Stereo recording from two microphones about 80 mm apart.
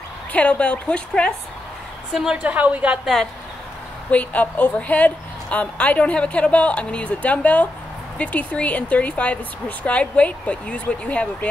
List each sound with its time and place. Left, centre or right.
0.3 s a woman's voice: centre
2.1 s a woman's voice: centre
4.1 s a woman's voice: centre